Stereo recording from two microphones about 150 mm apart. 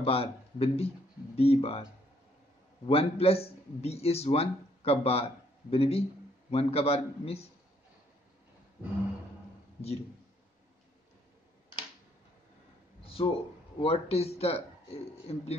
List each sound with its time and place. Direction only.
0.0 s a man's voice: 40° left (ahead or behind)
2.9 s a man's voice: 40° left (ahead or behind)
13.0 s a sound: 40° left (ahead or behind)
13.7 s a man's voice: 40° left (ahead or behind)